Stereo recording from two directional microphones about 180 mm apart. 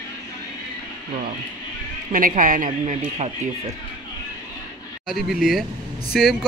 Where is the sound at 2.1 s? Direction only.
45° right (ahead or behind).